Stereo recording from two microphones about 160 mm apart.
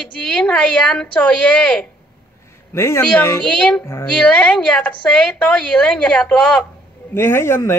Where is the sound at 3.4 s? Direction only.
5° left (ahead or behind).